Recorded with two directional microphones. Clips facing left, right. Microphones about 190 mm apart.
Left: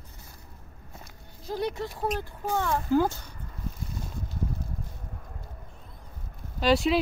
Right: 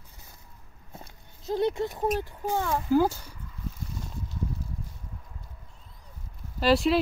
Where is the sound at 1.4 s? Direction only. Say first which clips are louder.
Right 4 dB; 25° right (ahead or behind).